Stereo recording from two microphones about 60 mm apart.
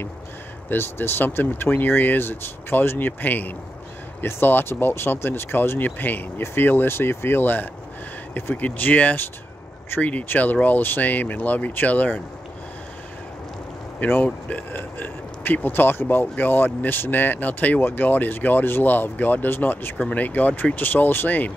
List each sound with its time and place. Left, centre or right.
0.7 s speech: left
14.0 s speech: left